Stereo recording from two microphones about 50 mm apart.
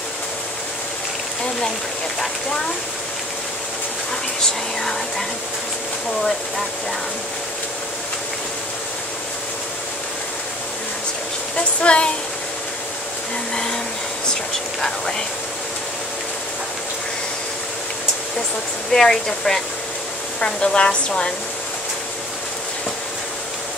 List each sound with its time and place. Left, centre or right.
11.5 s a woman's voice: left
14.8 s speech: centre
18.9 s speech: centre
20.3 s a woman's voice: centre